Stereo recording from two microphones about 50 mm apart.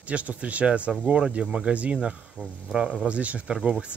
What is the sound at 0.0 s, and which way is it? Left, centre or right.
Speech, right.